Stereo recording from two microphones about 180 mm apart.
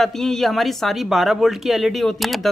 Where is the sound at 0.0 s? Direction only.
Centre (ahead or behind).